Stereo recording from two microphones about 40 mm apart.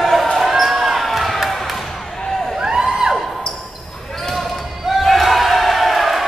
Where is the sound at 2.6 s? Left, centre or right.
Centre.